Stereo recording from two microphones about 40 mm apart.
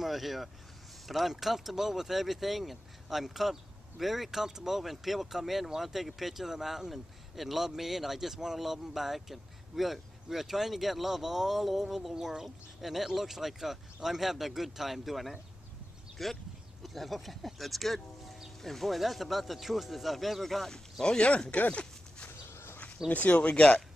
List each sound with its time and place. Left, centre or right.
0.0 s speech: centre
5.7 s speech: centre
5.9 s speech: centre
21.0 s speech: centre
21.5 s dog: left
23.0 s speech: left